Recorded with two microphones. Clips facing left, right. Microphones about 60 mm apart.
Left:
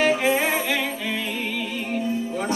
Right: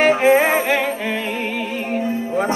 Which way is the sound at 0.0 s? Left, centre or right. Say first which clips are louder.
Right 7 dB; right.